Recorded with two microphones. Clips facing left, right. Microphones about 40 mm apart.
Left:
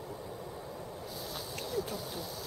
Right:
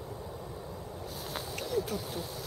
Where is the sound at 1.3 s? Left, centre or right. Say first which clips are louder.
Right 5 dB; right.